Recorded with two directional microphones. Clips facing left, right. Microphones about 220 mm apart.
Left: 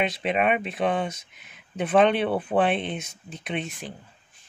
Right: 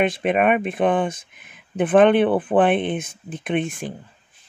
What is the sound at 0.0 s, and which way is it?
Speech, 50° right (ahead or behind).